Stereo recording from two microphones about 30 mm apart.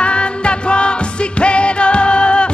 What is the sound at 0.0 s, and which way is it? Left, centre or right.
Music, left.